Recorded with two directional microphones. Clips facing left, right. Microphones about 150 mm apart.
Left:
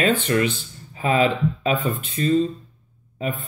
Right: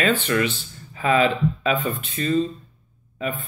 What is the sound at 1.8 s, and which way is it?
Speech, 20° left (ahead or behind).